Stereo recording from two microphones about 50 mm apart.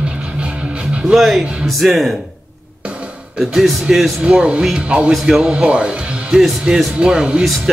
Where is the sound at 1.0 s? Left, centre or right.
Centre.